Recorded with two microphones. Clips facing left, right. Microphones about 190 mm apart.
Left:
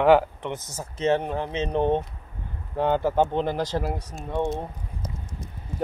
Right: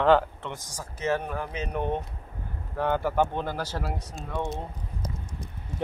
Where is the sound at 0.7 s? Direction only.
25° left (ahead or behind).